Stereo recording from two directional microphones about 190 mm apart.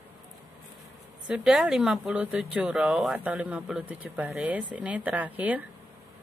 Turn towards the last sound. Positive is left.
turn(degrees=-10)  # may be behind; listen again after turning